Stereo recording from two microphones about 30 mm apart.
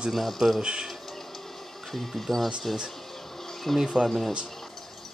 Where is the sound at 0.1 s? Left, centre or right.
Centre.